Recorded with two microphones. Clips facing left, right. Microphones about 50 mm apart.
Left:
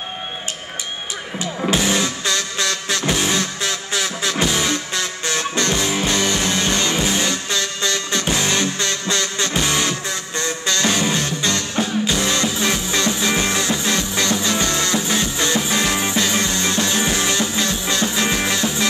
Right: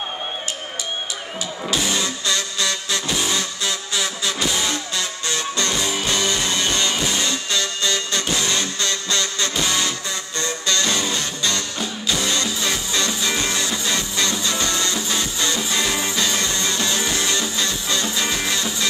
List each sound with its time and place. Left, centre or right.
1.7 s music: left